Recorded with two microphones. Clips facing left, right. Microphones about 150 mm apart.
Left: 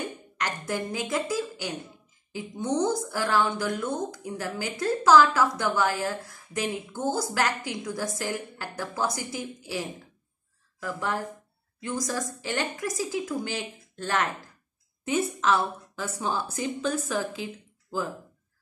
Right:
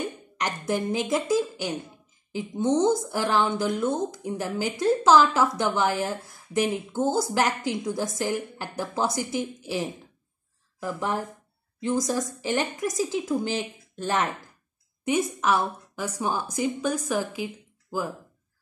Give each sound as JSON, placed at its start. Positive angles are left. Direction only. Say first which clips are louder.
{"t": 0.0, "sound": "a woman's voice", "louder": "right 2 dB", "side_deg": -20}
{"t": 10.8, "sound": "a woman's voice", "louder": "right 2 dB", "side_deg": -15}